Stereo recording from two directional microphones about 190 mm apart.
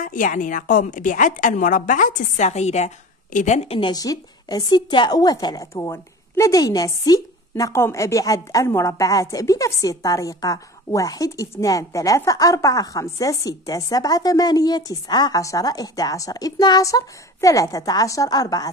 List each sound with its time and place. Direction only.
0.0 s a woman's voice: 45° left (ahead or behind); by 18.7 s 20° left (ahead or behind)